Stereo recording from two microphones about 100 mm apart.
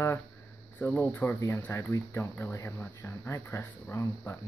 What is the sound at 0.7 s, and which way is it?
Speech, 15° left (ahead or behind).